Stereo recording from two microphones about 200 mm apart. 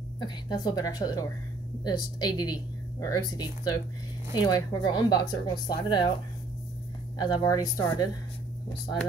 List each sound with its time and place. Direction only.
0.2 s speech: 20° left (ahead or behind)
7.2 s speech: 20° left (ahead or behind)